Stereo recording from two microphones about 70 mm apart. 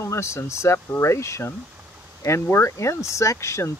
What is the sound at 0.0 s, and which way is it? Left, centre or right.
Speech, left.